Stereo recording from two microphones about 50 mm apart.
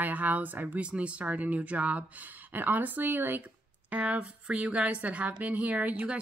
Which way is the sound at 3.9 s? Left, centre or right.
Right.